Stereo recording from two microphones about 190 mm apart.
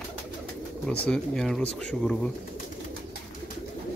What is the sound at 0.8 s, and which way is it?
Speech, 5° left (ahead or behind).